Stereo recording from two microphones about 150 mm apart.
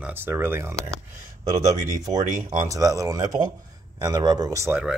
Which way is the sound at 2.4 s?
20° right (ahead or behind).